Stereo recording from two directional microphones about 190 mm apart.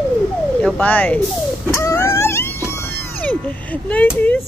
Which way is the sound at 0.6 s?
5° left (ahead or behind).